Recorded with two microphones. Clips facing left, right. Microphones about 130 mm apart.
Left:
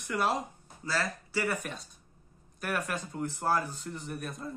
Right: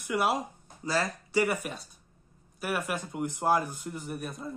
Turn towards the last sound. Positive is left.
turn(degrees=-5)  # may be behind; listen again after turning